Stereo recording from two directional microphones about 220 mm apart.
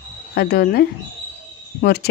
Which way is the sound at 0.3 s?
45° left (ahead or behind).